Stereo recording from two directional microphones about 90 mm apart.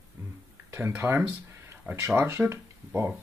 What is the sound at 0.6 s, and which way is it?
Speech, 30° right (ahead or behind).